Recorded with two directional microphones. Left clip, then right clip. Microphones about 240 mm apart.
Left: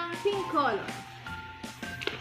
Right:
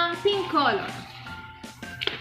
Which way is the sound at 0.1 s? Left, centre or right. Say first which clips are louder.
Right 5 dB; centre.